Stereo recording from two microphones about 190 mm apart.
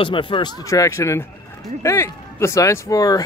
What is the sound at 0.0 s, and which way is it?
Speech, 25° left (ahead or behind).